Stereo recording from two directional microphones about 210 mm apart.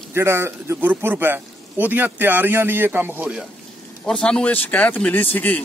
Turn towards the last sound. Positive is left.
turn(degrees=10)  # may be behind; listen again after turning